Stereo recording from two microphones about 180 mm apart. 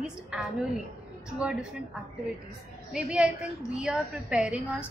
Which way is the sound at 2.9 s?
5° right (ahead or behind).